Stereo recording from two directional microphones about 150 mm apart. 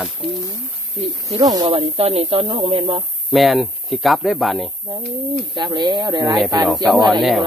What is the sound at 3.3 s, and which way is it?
Speech, centre (ahead or behind).